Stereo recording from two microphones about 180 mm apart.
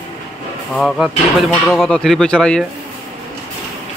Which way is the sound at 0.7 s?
Centre (ahead or behind).